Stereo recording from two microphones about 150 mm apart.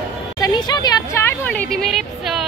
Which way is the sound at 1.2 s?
10° left (ahead or behind).